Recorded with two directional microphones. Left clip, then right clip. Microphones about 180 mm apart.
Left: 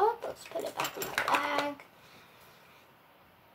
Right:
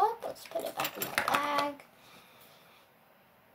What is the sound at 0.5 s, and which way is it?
Speech, 10° right (ahead or behind).